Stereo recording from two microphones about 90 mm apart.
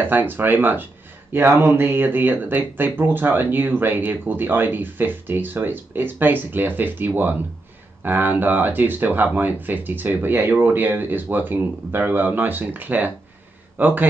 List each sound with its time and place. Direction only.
0.0 s speech: 20° right (ahead or behind)